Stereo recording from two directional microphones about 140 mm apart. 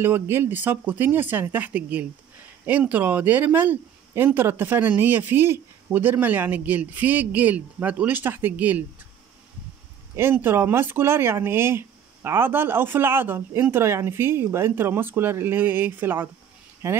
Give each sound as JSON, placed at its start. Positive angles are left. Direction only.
{"t": 0.0, "sound": "speech", "side_deg": -15}
{"t": 10.1, "sound": "speech", "side_deg": -15}